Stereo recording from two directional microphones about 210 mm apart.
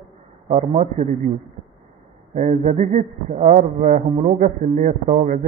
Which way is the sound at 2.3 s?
35° right (ahead or behind).